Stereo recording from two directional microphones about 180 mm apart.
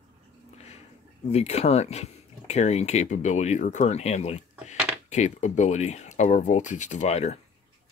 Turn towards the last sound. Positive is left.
turn(degrees=40)  # may be behind; listen again after turning